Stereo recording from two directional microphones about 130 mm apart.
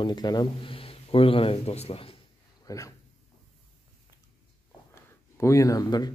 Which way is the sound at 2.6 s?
25° left (ahead or behind).